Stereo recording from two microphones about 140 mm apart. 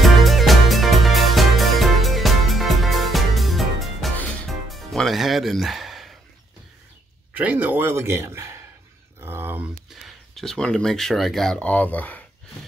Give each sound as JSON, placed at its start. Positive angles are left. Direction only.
{"t": 0.0, "sound": "music", "side_deg": 0}
{"t": 7.3, "sound": "a man's voice", "side_deg": -10}
{"t": 9.2, "sound": "a sound", "side_deg": -15}
{"t": 10.0, "sound": "speech", "side_deg": 0}